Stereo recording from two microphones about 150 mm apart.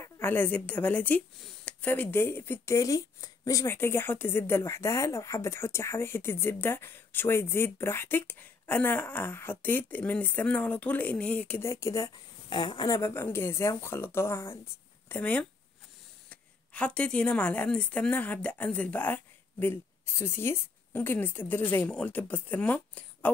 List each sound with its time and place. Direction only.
0.0 s a woman's voice: 15° left (ahead or behind)